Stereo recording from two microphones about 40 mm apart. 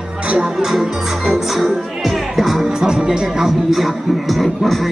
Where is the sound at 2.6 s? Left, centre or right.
Centre.